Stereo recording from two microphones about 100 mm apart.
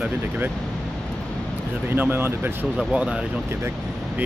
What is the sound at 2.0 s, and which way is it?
Speech, 20° right (ahead or behind).